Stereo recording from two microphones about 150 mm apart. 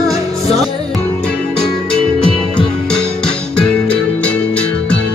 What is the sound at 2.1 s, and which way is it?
Music, 5° left (ahead or behind).